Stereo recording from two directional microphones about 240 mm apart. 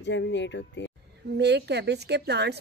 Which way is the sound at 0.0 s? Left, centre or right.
Left.